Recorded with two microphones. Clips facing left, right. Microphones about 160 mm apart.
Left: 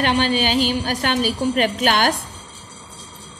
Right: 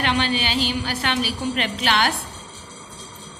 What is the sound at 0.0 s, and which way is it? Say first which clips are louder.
A woman's voice: left 4 dB; 45° left (ahead or behind).